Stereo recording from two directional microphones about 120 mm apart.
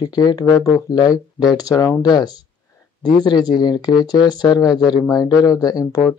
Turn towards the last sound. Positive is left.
turn(degrees=30)  # may be behind; listen again after turning